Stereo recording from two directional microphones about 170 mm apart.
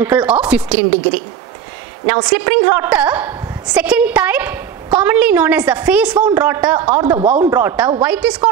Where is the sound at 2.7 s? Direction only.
10° right (ahead or behind).